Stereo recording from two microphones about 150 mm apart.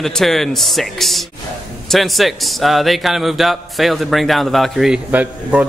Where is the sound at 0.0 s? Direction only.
Centre (ahead or behind).